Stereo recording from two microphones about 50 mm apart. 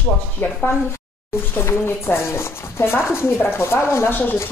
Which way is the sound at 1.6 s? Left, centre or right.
Left.